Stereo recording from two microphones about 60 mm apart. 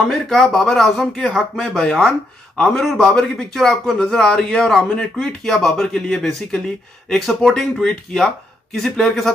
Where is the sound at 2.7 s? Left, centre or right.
Centre.